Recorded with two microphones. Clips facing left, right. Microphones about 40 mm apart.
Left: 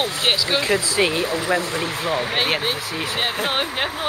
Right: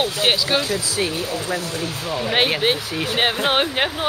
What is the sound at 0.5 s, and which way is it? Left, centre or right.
Speech, left.